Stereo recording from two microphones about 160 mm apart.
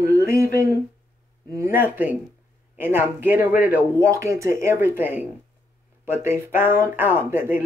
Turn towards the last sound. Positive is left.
turn(degrees=-15)  # may be behind; listen again after turning